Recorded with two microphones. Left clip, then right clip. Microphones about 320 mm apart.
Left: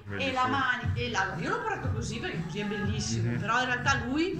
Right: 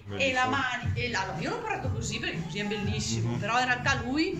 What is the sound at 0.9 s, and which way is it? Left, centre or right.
Speech, centre.